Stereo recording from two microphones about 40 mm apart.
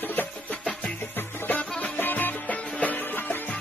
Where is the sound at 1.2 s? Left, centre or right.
Left.